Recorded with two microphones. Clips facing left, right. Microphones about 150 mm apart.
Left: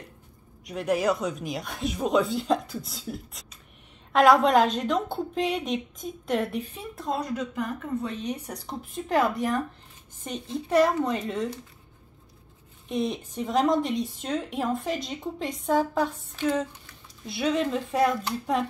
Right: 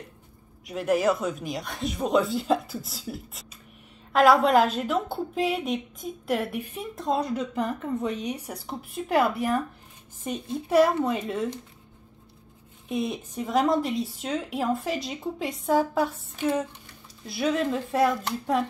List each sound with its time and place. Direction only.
0.7 s a woman's voice: centre (ahead or behind)
7.0 s a woman's voice: 25° right (ahead or behind); by 11.4 s 5° right (ahead or behind)
12.8 s a woman's voice: 5° right (ahead or behind)